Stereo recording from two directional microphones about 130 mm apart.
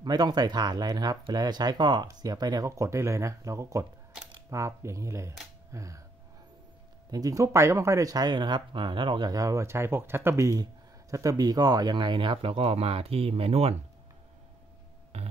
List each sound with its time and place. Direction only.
0.0 s speech: 30° right (ahead or behind)
7.1 s speech: 25° right (ahead or behind); by 13.7 s 50° right (ahead or behind)
15.1 s music: 55° right (ahead or behind)